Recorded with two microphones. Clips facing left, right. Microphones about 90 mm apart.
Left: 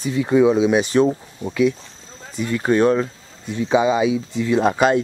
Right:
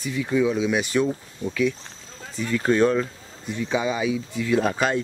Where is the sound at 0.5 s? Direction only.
25° left (ahead or behind).